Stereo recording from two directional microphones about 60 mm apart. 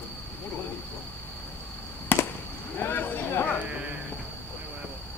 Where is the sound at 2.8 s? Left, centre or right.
Left.